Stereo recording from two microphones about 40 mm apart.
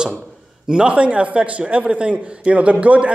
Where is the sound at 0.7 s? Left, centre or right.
Right.